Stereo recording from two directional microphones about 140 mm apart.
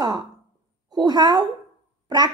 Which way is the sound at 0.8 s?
30° right (ahead or behind).